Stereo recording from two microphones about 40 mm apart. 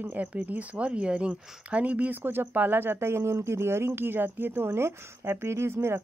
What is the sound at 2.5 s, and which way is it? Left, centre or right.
Speech, right.